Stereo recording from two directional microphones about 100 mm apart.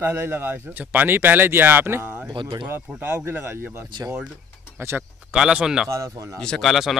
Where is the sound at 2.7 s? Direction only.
20° right (ahead or behind).